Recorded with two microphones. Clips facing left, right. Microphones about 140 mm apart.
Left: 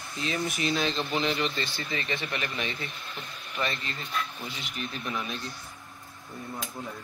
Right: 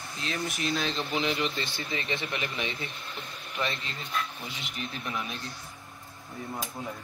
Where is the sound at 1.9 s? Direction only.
25° right (ahead or behind).